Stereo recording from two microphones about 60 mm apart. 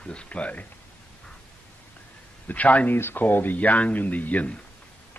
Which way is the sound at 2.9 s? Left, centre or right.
Left.